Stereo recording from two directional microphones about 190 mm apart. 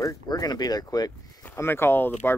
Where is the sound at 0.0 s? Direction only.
20° left (ahead or behind).